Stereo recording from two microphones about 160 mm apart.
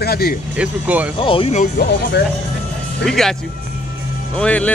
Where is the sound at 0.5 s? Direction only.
10° right (ahead or behind).